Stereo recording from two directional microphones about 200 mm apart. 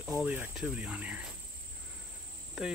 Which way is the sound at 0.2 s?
5° right (ahead or behind).